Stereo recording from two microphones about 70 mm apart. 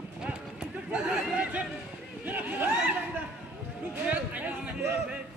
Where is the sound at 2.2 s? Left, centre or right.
Right.